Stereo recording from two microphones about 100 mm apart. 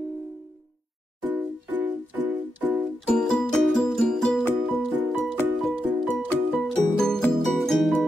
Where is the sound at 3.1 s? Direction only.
5° left (ahead or behind).